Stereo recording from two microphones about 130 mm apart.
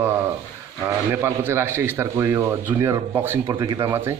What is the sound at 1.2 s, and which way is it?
Speech, 20° right (ahead or behind).